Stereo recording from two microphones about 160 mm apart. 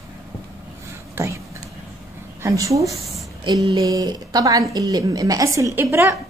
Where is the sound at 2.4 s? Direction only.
20° right (ahead or behind).